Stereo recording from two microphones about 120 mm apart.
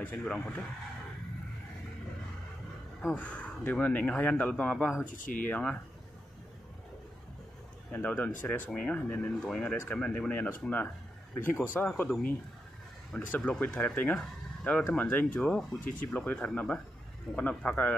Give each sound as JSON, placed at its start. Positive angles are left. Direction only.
{"t": 0.0, "sound": "speech", "side_deg": 10}
{"t": 3.0, "sound": "speech", "side_deg": 10}
{"t": 5.0, "sound": "speech", "side_deg": 90}
{"t": 5.4, "sound": "speech", "side_deg": 10}
{"t": 7.9, "sound": "speech", "side_deg": 15}